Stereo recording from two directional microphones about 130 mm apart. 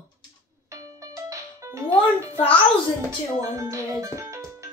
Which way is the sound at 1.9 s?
45° left (ahead or behind).